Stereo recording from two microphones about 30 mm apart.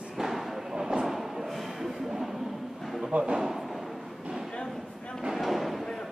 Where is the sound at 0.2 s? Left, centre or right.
Centre.